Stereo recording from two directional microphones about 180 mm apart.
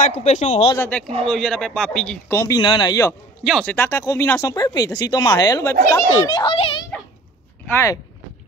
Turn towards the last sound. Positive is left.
turn(degrees=15)  # may be behind; listen again after turning